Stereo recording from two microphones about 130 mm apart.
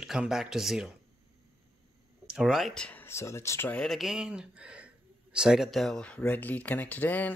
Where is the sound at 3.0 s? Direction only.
20° left (ahead or behind).